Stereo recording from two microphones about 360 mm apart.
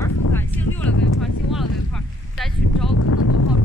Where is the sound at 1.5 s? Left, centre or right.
Centre.